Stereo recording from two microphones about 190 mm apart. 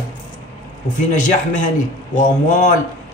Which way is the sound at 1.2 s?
40° left (ahead or behind).